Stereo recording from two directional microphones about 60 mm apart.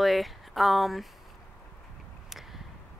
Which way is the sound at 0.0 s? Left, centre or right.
Centre.